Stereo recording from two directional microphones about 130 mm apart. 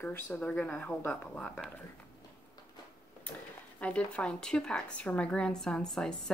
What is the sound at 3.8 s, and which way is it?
Speech, 10° left (ahead or behind).